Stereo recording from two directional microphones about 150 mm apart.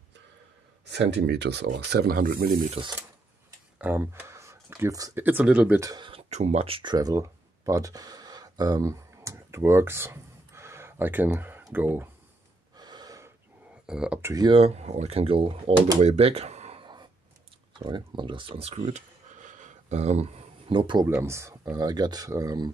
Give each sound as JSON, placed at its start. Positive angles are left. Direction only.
{"t": 1.3, "sound": "speech", "side_deg": -90}
{"t": 3.7, "sound": "speech", "side_deg": -10}
{"t": 5.2, "sound": "speech", "side_deg": -10}
{"t": 5.8, "sound": "speech", "side_deg": -25}
{"t": 6.3, "sound": "speech", "side_deg": -45}
{"t": 12.7, "sound": "gasp", "side_deg": -30}
{"t": 13.8, "sound": "speech", "side_deg": -5}
{"t": 14.3, "sound": "speech", "side_deg": -25}
{"t": 14.6, "sound": "speech", "side_deg": -45}
{"t": 16.0, "sound": "speech", "side_deg": -45}
{"t": 16.8, "sound": "a sound", "side_deg": -30}
{"t": 17.7, "sound": "speech", "side_deg": -30}
{"t": 21.1, "sound": "speech", "side_deg": -15}